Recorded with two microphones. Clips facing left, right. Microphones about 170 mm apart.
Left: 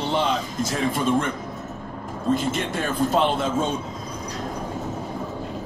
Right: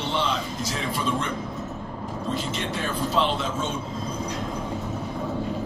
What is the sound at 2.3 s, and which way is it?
A man's voice, 50° left (ahead or behind).